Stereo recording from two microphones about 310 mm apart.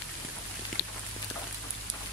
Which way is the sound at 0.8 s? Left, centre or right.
Left.